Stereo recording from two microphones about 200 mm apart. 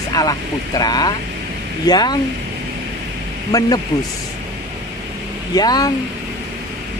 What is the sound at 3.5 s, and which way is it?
Speech, 20° left (ahead or behind).